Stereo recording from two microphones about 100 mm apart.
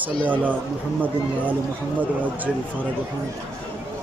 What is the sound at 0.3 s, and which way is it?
Speech, 15° right (ahead or behind).